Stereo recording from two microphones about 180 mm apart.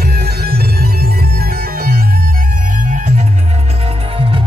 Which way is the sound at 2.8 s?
45° right (ahead or behind).